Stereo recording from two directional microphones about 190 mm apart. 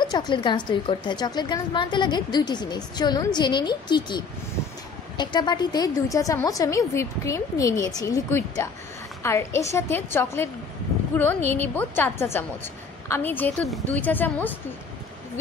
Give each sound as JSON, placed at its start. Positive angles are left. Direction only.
{"t": 0.0, "sound": "a woman's voice", "side_deg": 20}
{"t": 11.5, "sound": "a woman's voice", "side_deg": 10}